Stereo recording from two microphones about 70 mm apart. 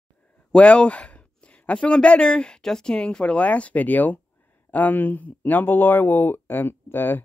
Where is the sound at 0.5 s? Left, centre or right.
Centre.